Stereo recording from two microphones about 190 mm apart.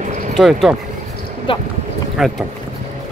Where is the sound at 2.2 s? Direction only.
Centre (ahead or behind).